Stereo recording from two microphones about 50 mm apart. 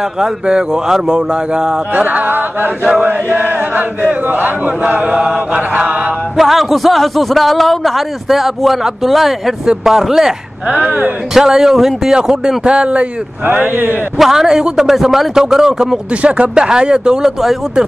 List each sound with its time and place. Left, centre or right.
0.2 s a man's voice: centre
2.0 s chant: right
5.1 s a man's voice: centre
5.5 s chant: right
6.3 s a man's voice: centre
11.3 s a man's voice: centre
13.5 s chant: right
14.1 s a man's voice: centre
16.2 s a man's voice: right